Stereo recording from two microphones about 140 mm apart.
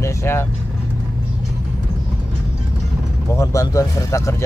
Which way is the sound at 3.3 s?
20° left (ahead or behind).